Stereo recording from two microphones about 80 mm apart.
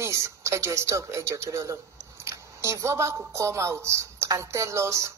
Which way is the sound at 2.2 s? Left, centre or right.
Right.